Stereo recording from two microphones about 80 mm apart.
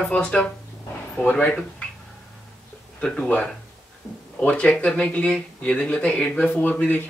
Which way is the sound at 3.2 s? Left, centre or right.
Centre.